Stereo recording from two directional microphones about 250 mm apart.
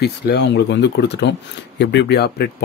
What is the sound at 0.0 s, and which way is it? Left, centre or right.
Speech, left.